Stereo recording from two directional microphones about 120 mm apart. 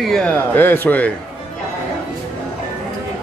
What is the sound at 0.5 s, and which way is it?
Speech, 15° left (ahead or behind).